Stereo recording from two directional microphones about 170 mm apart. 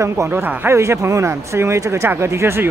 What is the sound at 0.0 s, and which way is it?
A man's voice, 15° right (ahead or behind).